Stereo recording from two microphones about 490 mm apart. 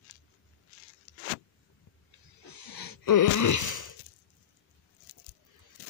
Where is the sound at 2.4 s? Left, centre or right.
Left.